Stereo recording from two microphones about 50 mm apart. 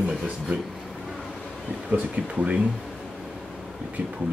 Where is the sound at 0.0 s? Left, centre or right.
Centre.